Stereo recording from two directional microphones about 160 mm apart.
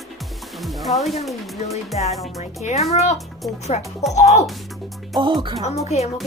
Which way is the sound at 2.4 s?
45° left (ahead or behind).